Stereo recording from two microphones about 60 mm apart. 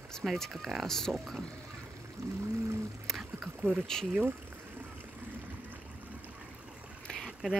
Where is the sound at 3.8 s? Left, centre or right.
Centre.